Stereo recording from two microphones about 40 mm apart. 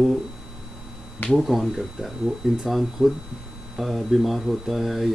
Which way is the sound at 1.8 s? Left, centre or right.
Centre.